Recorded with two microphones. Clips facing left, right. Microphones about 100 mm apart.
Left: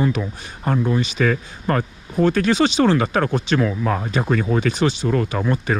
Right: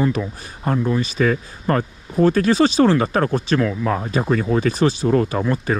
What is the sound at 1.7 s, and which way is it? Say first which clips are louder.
Speech: right 1 dB; 35° right (ahead or behind).